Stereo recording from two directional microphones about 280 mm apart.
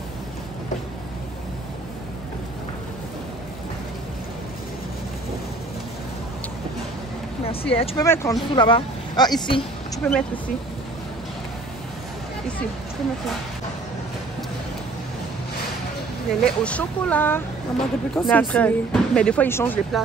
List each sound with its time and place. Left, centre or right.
7.4 s speech: left
7.9 s speech: centre
9.9 s a woman's voice: centre
16.3 s a woman's voice: centre